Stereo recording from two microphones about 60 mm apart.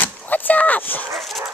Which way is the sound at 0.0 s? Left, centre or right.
Left.